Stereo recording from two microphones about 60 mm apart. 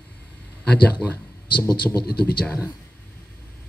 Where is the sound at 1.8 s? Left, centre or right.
Left.